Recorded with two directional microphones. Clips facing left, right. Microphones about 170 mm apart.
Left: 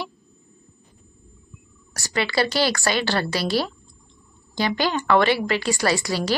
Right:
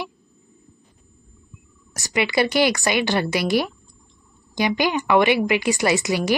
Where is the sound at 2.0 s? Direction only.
20° right (ahead or behind).